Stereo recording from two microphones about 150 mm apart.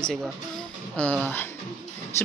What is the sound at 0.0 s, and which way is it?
Speech, centre (ahead or behind).